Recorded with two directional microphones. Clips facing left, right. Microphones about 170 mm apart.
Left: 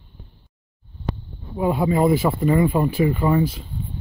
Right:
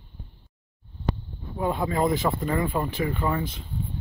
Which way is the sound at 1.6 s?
10° left (ahead or behind).